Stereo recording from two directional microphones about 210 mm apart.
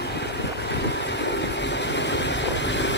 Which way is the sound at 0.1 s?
55° left (ahead or behind).